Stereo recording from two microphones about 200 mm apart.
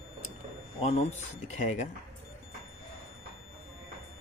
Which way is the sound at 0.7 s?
30° left (ahead or behind).